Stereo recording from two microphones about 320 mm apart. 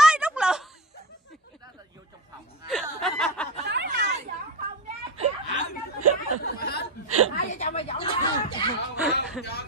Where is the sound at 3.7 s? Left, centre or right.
Right.